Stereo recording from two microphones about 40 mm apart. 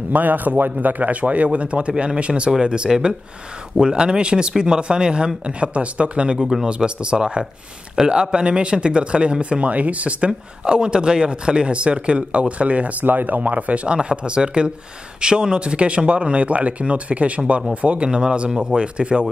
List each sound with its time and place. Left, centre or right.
0.1 s speech: right
13.0 s speech: right
13.9 s speech: right
18.5 s speech: centre
18.8 s speech: right